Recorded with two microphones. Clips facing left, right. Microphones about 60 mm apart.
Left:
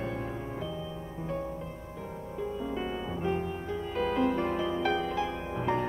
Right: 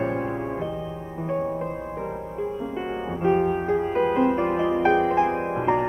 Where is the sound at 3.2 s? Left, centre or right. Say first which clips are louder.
Right 13 dB; right.